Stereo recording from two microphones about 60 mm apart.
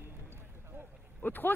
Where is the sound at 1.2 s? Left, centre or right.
Left.